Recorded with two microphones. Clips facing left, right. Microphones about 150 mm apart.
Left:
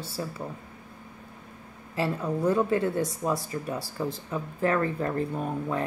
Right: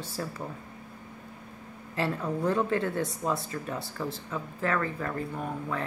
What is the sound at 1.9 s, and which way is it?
Speech, 5° left (ahead or behind).